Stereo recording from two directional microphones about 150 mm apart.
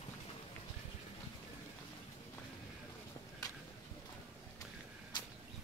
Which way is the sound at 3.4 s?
25° left (ahead or behind).